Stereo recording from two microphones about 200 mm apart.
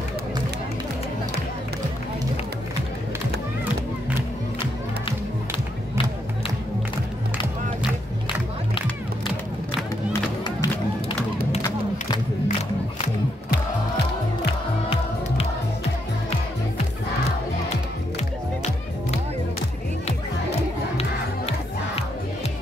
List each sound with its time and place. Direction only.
8.7 s crowd: 25° left (ahead or behind)
10.1 s music: 20° left (ahead or behind)